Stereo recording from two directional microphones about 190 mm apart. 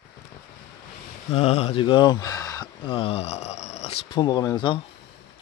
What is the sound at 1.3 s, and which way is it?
Speech, 30° left (ahead or behind).